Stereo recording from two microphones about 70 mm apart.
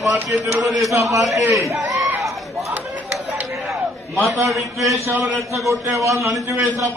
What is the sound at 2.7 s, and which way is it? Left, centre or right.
Chatter, right.